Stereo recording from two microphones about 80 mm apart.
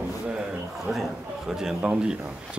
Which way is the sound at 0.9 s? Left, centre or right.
Centre.